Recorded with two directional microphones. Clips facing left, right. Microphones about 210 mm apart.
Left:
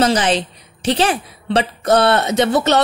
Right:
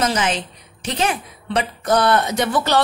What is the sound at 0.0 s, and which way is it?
A woman's voice, 35° left (ahead or behind).